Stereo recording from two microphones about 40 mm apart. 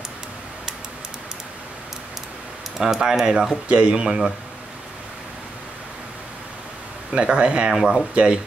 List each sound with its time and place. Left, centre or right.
2.8 s speech: centre
3.6 s speech: right
7.1 s speech: right
7.7 s speech: centre
8.1 s speech: right